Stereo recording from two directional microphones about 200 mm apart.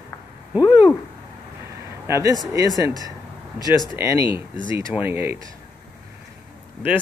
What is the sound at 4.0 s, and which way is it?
Speech, 15° right (ahead or behind).